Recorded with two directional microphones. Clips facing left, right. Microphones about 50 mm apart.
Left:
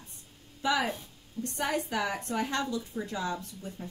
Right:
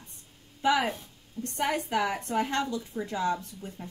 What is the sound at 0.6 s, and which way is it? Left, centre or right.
Speech, right.